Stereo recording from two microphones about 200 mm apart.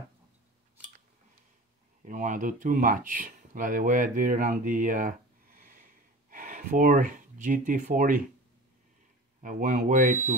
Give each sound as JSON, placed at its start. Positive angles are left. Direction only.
{"t": 2.0, "sound": "speech", "side_deg": -40}
{"t": 9.4, "sound": "speech", "side_deg": -40}